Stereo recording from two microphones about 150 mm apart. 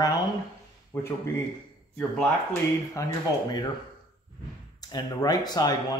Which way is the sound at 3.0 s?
20° left (ahead or behind).